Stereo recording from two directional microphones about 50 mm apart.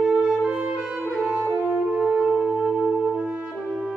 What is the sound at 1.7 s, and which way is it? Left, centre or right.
Shofar, right.